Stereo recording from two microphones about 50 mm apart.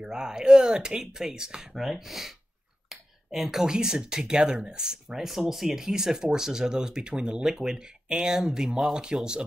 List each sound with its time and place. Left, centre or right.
0.0 s speech: centre
8.9 s speech: centre